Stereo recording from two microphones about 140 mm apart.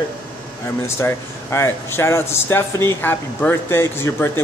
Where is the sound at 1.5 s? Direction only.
15° left (ahead or behind).